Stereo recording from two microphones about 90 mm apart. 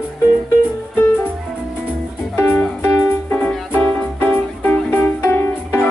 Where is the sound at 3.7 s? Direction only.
20° left (ahead or behind).